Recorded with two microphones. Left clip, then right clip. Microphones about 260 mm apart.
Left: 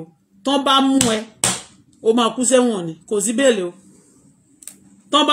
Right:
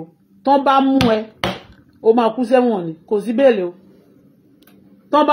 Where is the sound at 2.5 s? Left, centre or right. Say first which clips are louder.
Right 1 dB; centre.